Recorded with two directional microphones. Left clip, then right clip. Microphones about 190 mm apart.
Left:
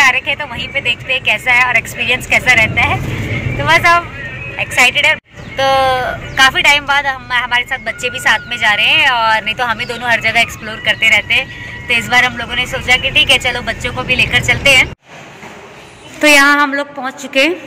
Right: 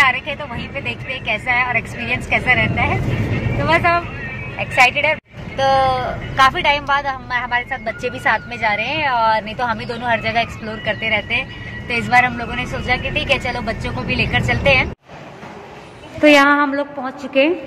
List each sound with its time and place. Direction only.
0.0 s speech: 5° right (ahead or behind)
4.6 s speech: 20° right (ahead or behind)
5.6 s speech: 5° right (ahead or behind)
7.2 s speech: 20° right (ahead or behind)
16.2 s a woman's voice: 5° right (ahead or behind)